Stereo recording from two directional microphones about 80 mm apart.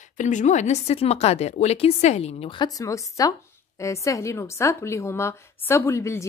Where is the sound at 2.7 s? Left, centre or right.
Left.